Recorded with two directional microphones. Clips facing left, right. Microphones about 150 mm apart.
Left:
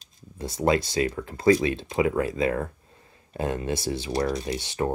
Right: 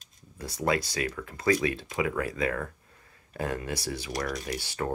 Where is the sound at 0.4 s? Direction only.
25° left (ahead or behind).